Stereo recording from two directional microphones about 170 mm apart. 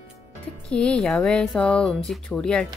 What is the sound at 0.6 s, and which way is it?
Speech, 5° left (ahead or behind).